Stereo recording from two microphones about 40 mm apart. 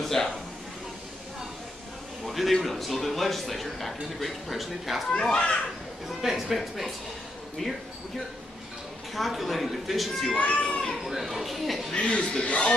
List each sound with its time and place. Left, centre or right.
0.0 s a sound: centre
2.2 s a man's voice: centre
5.2 s speech: left
6.0 s a man's voice: centre
7.6 s speech: centre
9.1 s a man's voice: centre
10.3 s speech: left
11.1 s a man's voice: centre
11.9 s speech: left